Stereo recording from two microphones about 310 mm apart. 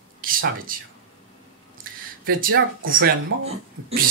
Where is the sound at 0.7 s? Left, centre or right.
Right.